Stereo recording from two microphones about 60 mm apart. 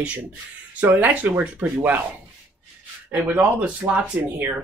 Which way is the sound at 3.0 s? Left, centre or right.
Right.